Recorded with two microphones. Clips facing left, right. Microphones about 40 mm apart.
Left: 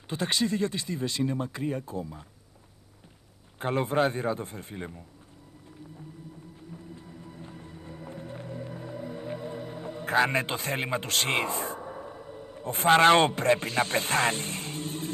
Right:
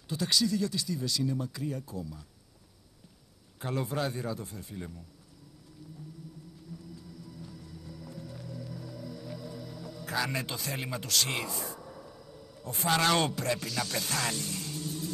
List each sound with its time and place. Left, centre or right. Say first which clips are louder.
0.1 s speech: left 1 dB; left
3.5 s speech: left 7 dB; left
6.7 s music: left 1 dB; left